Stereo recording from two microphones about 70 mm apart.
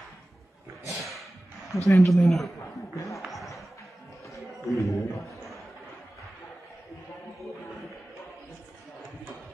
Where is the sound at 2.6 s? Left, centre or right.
Left.